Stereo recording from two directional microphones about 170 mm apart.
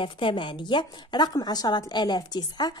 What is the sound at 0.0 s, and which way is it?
A woman's voice, 30° left (ahead or behind).